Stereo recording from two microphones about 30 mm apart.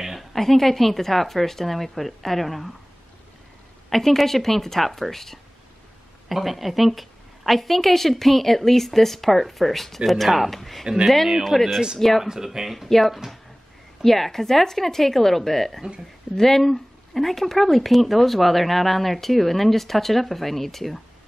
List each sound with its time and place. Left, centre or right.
0.2 s a woman's voice: centre
3.9 s a woman's voice: centre
6.2 s speech: centre
11.5 s speech: centre
12.9 s a woman's voice: centre